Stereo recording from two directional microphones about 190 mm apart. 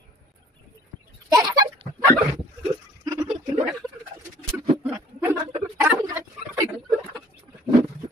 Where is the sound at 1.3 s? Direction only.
20° right (ahead or behind).